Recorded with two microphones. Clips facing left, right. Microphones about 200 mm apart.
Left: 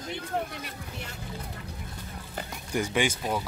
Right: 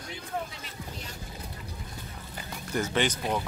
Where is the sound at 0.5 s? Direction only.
60° left (ahead or behind).